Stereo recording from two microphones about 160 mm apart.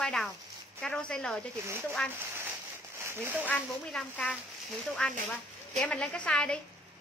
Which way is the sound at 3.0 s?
15° right (ahead or behind).